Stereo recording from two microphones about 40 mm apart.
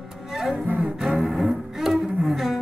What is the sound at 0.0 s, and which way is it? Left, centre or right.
Music, centre.